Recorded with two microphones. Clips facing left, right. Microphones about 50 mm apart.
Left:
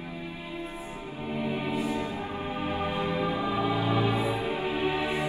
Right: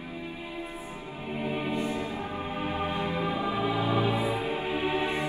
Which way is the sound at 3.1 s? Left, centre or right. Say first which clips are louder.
Left 1 dB; right.